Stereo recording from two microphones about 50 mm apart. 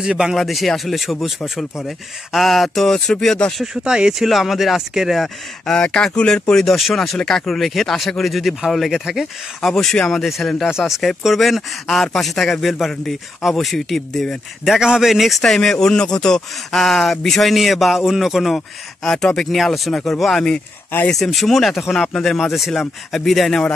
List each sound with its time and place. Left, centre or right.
0.0 s speech: centre
0.3 s speech: centre
3.8 s speech: centre
4.2 s speech: centre
5.7 s speech: centre
10.2 s speech: centre
14.6 s speech: centre
15.4 s speech: centre
19.0 s speech: centre
19.5 s speech: centre